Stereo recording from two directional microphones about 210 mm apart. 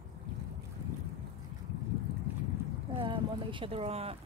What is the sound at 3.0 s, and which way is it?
Speech, 25° right (ahead or behind).